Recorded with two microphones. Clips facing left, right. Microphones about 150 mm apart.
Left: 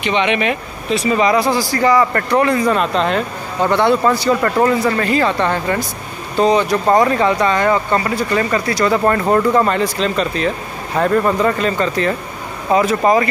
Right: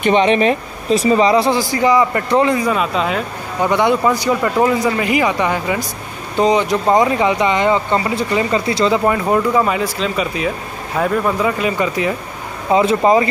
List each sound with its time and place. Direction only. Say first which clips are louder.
0.0 s speech: right 4 dB; 40° right (ahead or behind); by 9.0 s 20° right (ahead or behind)
9.0 s speech: left 1 dB; 5° right (ahead or behind)
12.7 s speech: right 1 dB; 20° right (ahead or behind)